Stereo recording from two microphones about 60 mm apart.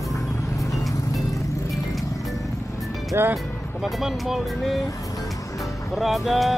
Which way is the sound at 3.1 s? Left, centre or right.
Right.